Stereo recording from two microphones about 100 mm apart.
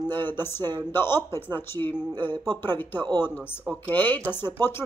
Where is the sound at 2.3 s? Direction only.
50° right (ahead or behind).